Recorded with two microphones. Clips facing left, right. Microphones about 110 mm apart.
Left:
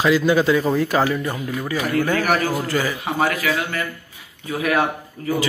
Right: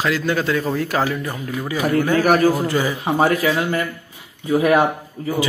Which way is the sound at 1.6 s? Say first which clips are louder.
Right 3 dB; 15° right (ahead or behind).